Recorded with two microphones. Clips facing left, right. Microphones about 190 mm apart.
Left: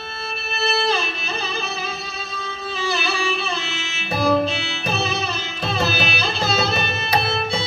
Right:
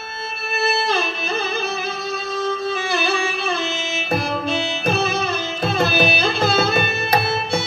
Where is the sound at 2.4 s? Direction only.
55° right (ahead or behind).